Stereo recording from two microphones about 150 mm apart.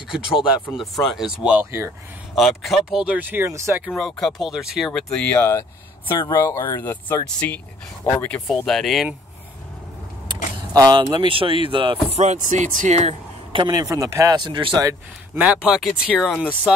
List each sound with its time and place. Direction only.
0.7 s speech: centre (ahead or behind); by 1.9 s 15° right (ahead or behind)
2.3 s speech: centre (ahead or behind); by 3.8 s 20° right (ahead or behind)
3.9 s speech: centre (ahead or behind)
6.0 s speech: 30° left (ahead or behind)
6.3 s speech: 20° left (ahead or behind)
8.5 s speech: centre (ahead or behind)
10.2 s speech: 25° right (ahead or behind)
12.2 s speech: 50° right (ahead or behind); by 14.9 s 35° right (ahead or behind)
15.3 s speech: 10° right (ahead or behind)